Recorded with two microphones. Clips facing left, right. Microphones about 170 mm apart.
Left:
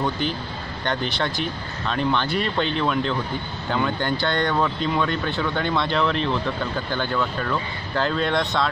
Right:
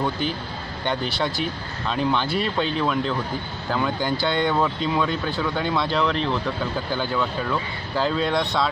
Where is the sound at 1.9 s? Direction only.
5° right (ahead or behind).